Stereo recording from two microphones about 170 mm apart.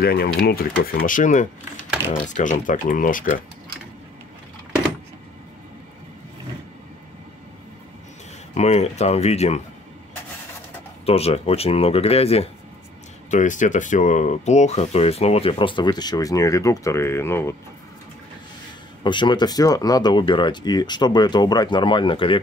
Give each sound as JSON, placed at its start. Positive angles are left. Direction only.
{"t": 0.0, "sound": "speech", "side_deg": 65}
{"t": 8.5, "sound": "speech", "side_deg": 40}
{"t": 11.1, "sound": "speech", "side_deg": 35}
{"t": 13.3, "sound": "speech", "side_deg": 45}
{"t": 19.0, "sound": "speech", "side_deg": 25}